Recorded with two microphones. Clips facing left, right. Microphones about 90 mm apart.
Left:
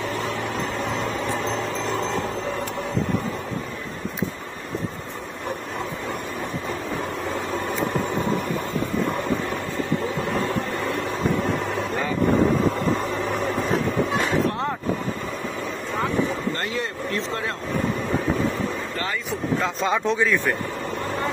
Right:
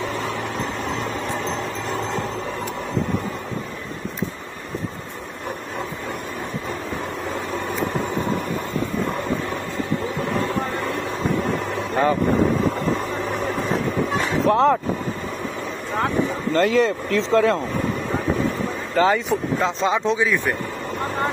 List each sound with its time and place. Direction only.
14.4 s vehicle: 85° right
16.5 s speech: 90° right
19.0 s speech: 90° right
19.6 s speech: 20° right (ahead or behind)